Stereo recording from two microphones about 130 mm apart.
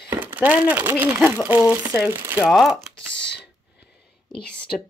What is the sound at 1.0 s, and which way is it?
Speech, 15° right (ahead or behind).